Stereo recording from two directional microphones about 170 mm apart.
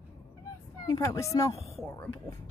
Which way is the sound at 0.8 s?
20° left (ahead or behind).